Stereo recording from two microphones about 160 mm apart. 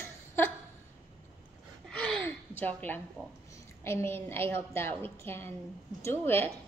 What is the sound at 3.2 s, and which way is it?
Speech, 15° right (ahead or behind).